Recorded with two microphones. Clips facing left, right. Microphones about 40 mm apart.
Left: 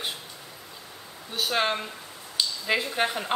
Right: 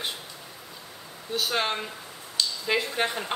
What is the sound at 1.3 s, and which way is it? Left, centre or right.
A woman's voice, centre.